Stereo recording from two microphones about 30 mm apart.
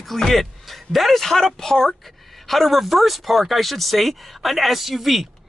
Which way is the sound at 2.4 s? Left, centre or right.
Centre.